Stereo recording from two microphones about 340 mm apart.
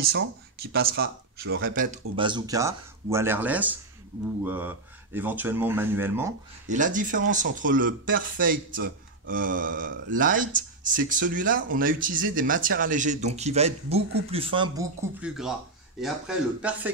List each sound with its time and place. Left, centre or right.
0.0 s speech: right; by 6.3 s centre
6.7 s speech: right; by 16.9 s centre